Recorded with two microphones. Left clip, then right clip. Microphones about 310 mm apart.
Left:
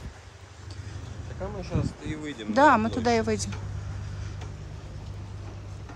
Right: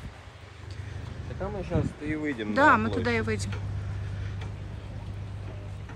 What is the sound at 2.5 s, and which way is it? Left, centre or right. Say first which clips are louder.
Speech: left 2 dB; centre.